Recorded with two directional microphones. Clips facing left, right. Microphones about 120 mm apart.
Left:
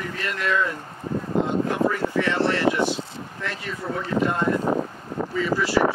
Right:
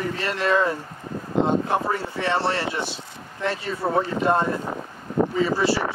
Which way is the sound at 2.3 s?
30° right (ahead or behind).